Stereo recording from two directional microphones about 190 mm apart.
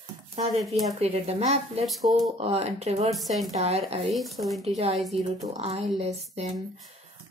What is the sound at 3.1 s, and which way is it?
Speech, centre (ahead or behind).